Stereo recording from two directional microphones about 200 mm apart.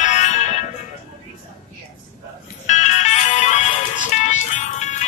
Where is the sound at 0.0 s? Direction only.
35° left (ahead or behind).